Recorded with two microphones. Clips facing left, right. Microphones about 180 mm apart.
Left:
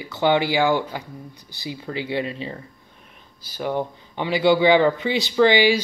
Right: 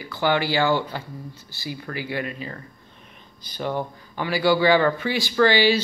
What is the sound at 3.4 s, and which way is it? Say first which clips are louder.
Speech: left 2 dB; 10° left (ahead or behind).